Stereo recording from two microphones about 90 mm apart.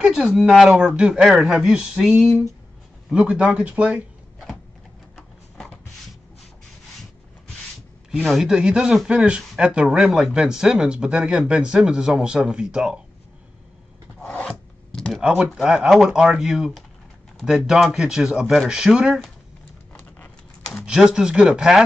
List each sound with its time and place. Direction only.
0.0 s speech: 5° right (ahead or behind)
8.3 s speech: 5° right (ahead or behind)
14.2 s filing: 10° left (ahead or behind)
15.0 s computer keyboard: 5° left (ahead or behind)
15.2 s speech: 10° right (ahead or behind)
19.9 s a sound: 20° left (ahead or behind)
20.8 s speech: 10° right (ahead or behind)